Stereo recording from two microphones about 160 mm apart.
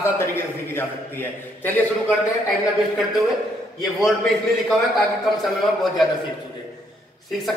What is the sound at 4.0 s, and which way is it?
A man's voice, centre (ahead or behind).